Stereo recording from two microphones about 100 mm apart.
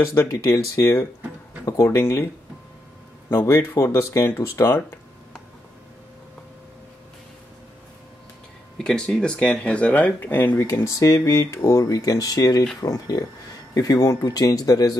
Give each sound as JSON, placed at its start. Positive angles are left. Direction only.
{"t": 0.0, "sound": "speech", "side_deg": 30}
{"t": 3.3, "sound": "speech", "side_deg": 25}
{"t": 8.7, "sound": "speech", "side_deg": 5}
{"t": 10.7, "sound": "speech", "side_deg": 30}